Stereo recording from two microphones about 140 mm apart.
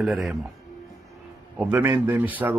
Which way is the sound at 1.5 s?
10° right (ahead or behind).